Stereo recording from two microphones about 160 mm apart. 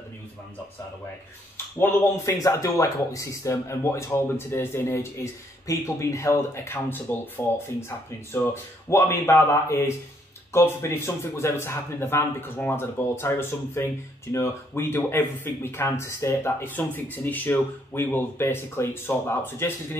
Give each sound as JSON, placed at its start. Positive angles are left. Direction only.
{"t": 1.8, "sound": "speech", "side_deg": 20}